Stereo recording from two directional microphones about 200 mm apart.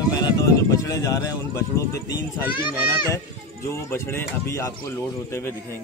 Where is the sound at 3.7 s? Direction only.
10° left (ahead or behind).